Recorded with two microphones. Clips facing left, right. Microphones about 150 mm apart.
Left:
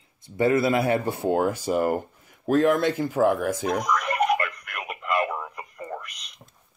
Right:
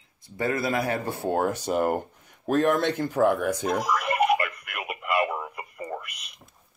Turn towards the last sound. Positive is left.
turn(degrees=-5)  # may be behind; listen again after turning